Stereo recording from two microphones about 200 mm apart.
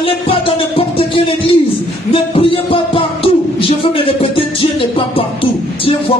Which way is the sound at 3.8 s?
25° left (ahead or behind).